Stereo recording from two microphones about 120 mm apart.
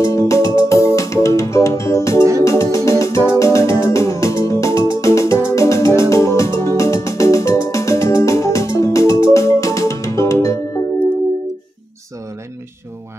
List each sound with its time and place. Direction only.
0.0 s music: 25° left (ahead or behind)